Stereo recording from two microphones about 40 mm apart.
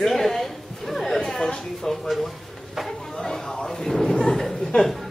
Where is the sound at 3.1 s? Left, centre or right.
Centre.